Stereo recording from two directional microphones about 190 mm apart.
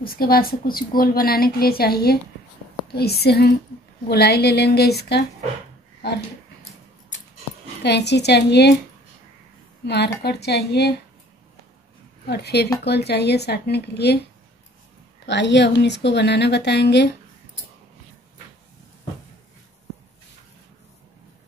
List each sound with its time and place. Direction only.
0.0 s a woman's voice: 50° left (ahead or behind)
7.8 s a woman's voice: 60° left (ahead or behind)
9.8 s a woman's voice: 60° left (ahead or behind)
12.3 s a woman's voice: 60° left (ahead or behind)
15.2 s a woman's voice: 65° left (ahead or behind)